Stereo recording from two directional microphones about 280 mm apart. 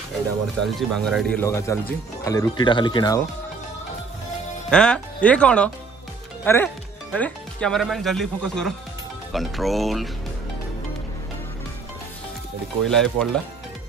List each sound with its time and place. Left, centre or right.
0.6 s speech: centre
4.6 s speech: centre
12.8 s speech: centre